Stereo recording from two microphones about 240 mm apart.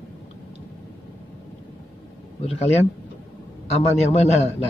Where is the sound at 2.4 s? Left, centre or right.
Left.